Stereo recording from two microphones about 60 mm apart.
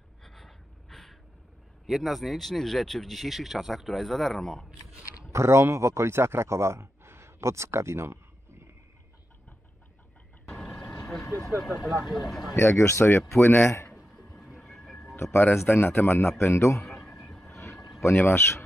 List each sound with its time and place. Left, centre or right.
0.2 s gasp: centre
1.9 s speech: centre
5.3 s speech: right
10.4 s vehicle: centre
10.7 s vehicle: centre
11.6 s speech: centre
12.5 s a man's voice: left
14.0 s vehicle: centre
15.3 s a man's voice: left
16.8 s a sound: centre
18.0 s a man's voice: left